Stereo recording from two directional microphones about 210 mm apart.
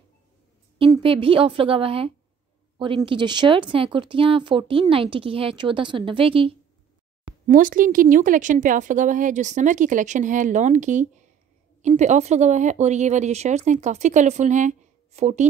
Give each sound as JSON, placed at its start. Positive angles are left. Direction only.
{"t": 0.9, "sound": "speech", "side_deg": -25}
{"t": 7.4, "sound": "a woman's voice", "side_deg": -40}